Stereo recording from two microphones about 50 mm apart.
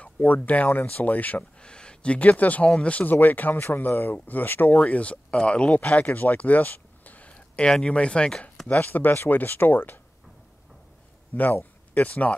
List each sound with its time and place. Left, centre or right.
0.0 s a sound: left
0.7 s speech: left
1.6 s speech: centre
3.1 s speech: left
4.7 s speech: left
8.3 s chopping: centre
8.6 s speech: left
11.3 s speech: left